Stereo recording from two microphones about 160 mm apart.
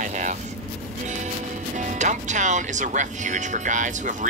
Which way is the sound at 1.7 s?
50° right (ahead or behind).